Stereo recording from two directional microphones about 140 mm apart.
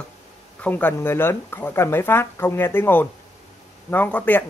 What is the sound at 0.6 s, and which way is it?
Speech, 10° left (ahead or behind).